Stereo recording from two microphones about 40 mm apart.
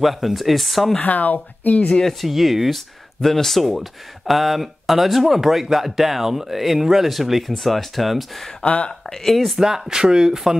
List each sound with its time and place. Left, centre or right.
0.0 s speech: centre
1.0 s speech: left
2.0 s speech: centre
3.2 s speech: centre
8.6 s speech: left
9.1 s speech: centre
9.6 s speech: centre